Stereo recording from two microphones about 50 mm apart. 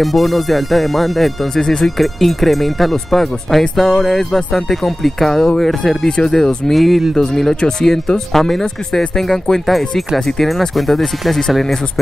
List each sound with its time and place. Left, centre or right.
0.0 s speech: centre